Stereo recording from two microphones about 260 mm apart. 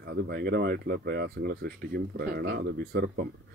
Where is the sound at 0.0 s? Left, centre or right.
Right.